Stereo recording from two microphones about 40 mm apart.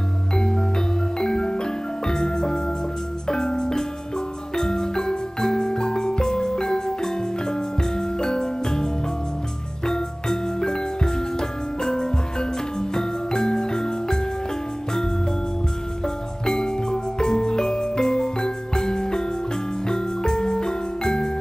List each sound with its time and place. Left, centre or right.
0.4 s music: centre
16.4 s music: centre